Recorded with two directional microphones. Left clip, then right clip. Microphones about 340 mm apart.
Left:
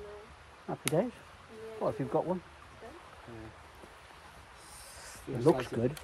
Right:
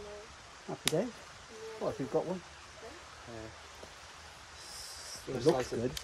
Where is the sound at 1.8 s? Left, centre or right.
Left.